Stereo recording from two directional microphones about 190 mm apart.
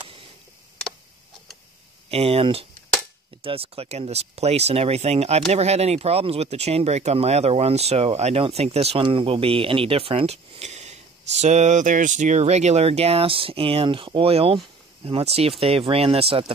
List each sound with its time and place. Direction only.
2.0 s speech: 30° right (ahead or behind)